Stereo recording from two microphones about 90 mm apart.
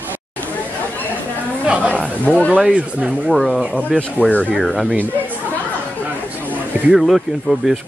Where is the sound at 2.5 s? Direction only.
15° right (ahead or behind).